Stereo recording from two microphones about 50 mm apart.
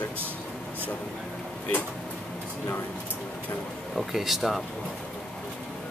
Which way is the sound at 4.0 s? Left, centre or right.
Centre.